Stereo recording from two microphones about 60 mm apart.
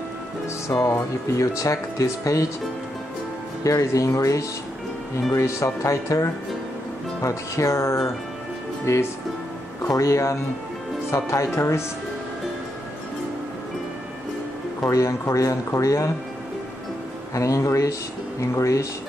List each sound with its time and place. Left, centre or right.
0.7 s speech: left
3.6 s speech: left
9.8 s speech: left
14.8 s speech: left
17.3 s speech: left